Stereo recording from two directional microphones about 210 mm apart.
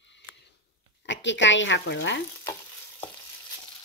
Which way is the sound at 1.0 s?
60° left (ahead or behind).